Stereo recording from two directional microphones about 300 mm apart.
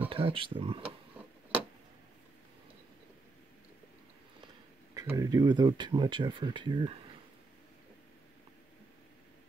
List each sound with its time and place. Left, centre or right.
0.1 s speech: centre
0.8 s a sound: centre
4.9 s speech: centre